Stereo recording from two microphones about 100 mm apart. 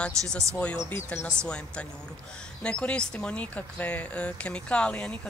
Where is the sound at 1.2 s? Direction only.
10° left (ahead or behind).